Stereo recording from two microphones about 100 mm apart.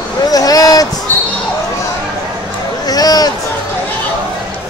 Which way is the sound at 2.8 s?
40° left (ahead or behind).